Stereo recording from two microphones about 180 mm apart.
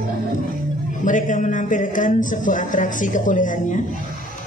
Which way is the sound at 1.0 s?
45° left (ahead or behind).